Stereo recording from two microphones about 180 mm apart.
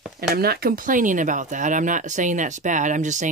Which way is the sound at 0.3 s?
60° right (ahead or behind).